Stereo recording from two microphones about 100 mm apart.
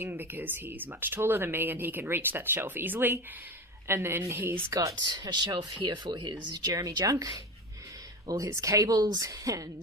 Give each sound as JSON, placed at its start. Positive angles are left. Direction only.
{"t": 0.0, "sound": "speech", "side_deg": -20}
{"t": 5.0, "sound": "speech", "side_deg": -45}